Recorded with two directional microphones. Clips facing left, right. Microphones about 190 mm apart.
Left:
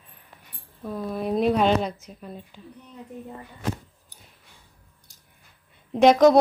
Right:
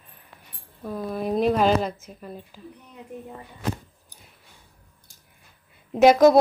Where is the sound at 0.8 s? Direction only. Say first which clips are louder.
Even; centre (ahead or behind).